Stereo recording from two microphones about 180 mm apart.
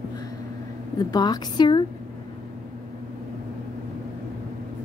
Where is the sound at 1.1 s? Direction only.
20° left (ahead or behind).